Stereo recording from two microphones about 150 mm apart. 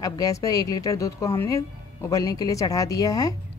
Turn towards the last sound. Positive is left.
turn(degrees=25)  # may be behind; listen again after turning